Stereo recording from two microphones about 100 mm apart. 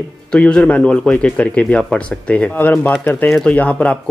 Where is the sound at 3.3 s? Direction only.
Centre (ahead or behind).